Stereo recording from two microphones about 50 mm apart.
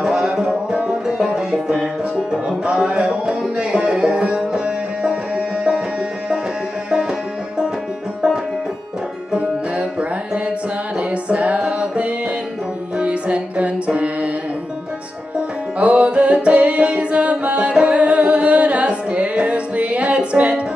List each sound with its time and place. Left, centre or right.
0.0 s music: centre
6.9 s music: centre
9.4 s music: right
15.3 s music: right